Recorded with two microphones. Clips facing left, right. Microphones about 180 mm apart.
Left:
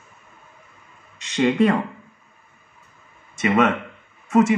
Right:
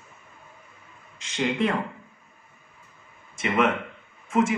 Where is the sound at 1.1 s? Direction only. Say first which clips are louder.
Left 8 dB; 75° left (ahead or behind).